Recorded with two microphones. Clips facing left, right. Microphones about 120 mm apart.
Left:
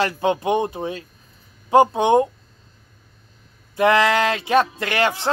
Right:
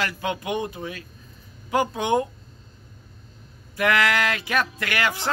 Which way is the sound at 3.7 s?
25° left (ahead or behind).